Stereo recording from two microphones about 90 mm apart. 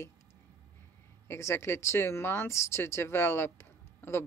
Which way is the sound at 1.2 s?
30° left (ahead or behind).